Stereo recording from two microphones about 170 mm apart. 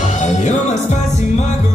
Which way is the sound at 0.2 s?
40° left (ahead or behind).